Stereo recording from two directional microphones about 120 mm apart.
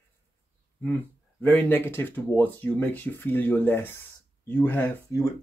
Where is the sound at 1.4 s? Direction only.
15° left (ahead or behind).